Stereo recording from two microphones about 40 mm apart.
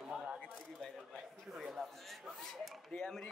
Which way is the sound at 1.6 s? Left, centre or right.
Centre.